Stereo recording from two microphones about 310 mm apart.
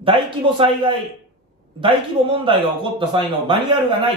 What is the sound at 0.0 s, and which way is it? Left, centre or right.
A man's voice, centre.